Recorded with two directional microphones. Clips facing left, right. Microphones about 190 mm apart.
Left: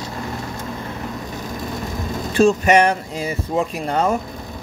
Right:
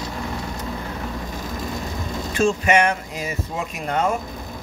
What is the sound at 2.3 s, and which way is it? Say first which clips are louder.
Speech: left 4 dB; 40° left (ahead or behind).